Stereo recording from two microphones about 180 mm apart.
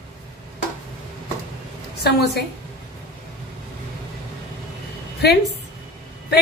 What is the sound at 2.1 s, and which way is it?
Speech, 65° left (ahead or behind).